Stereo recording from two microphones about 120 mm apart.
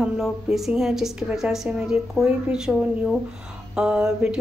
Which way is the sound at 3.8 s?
5° right (ahead or behind).